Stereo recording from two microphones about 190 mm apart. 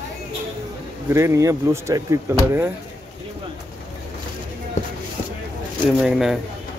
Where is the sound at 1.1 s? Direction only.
15° right (ahead or behind).